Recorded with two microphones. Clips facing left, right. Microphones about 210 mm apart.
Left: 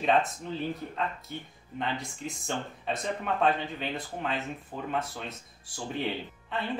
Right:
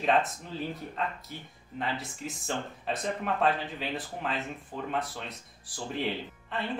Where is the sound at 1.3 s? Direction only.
5° right (ahead or behind).